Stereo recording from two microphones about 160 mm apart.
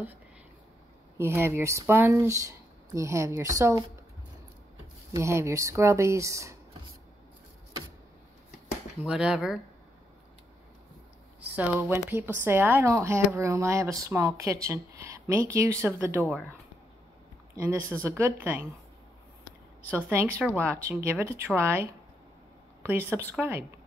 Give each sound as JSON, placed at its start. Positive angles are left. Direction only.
{"t": 1.1, "sound": "speech", "side_deg": -15}
{"t": 5.1, "sound": "speech", "side_deg": -15}
{"t": 9.0, "sound": "speech", "side_deg": -5}
{"t": 11.5, "sound": "speech", "side_deg": -10}
{"t": 17.6, "sound": "speech", "side_deg": -20}
{"t": 19.9, "sound": "speech", "side_deg": -15}